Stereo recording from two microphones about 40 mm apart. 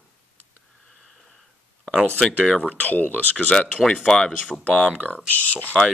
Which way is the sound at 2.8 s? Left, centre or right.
Left.